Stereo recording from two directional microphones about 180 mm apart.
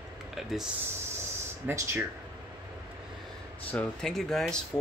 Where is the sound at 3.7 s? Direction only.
5° left (ahead or behind).